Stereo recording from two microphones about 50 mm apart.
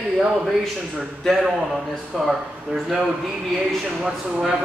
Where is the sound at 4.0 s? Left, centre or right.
Centre.